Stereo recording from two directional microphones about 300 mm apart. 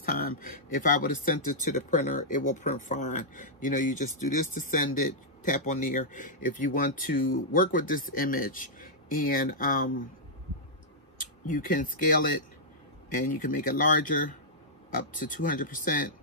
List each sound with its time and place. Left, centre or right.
0.0 s speech: left
2.1 s speech: left
2.5 s speech: left
4.3 s speech: left
5.4 s speech: left
11.1 s speech: left